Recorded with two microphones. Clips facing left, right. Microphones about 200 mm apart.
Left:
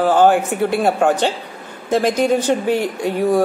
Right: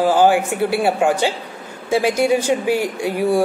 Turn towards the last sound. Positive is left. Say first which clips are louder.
# left 1 dB
turn(degrees=-10)  # may be behind; listen again after turning